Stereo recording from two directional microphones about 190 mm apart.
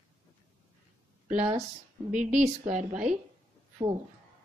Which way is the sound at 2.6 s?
40° right (ahead or behind).